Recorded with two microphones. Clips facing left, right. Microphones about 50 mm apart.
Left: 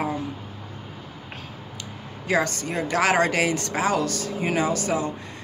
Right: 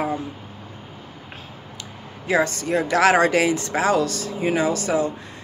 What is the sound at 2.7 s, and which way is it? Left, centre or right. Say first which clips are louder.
Speech: right 7 dB; right.